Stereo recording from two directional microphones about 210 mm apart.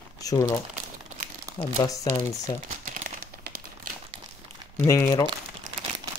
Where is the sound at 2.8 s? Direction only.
40° right (ahead or behind).